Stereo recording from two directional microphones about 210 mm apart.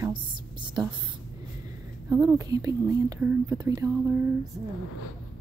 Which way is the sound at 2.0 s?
15° right (ahead or behind).